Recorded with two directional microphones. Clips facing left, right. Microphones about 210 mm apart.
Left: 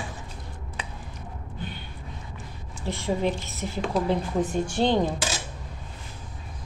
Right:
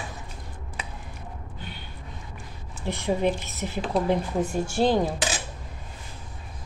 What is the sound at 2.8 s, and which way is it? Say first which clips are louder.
Speech: right 1 dB; 20° right (ahead or behind).